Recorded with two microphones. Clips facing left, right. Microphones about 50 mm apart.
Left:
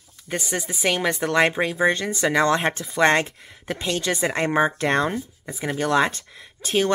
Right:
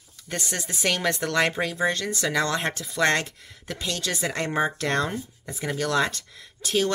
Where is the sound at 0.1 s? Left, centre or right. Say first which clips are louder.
Left 4 dB; centre.